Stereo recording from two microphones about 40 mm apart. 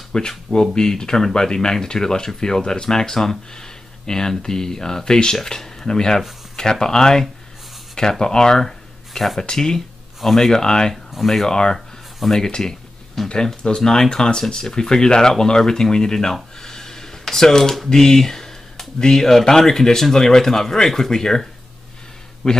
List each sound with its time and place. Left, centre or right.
0.1 s speech: centre
9.4 s speech: centre
10.2 s speech: centre
10.6 s speech: centre
11.1 s speech: centre
11.4 s speech: centre
13.2 s speech: centre
13.6 s speech: centre
16.6 s a sound: centre
19.4 s speech: centre
22.4 s speech: centre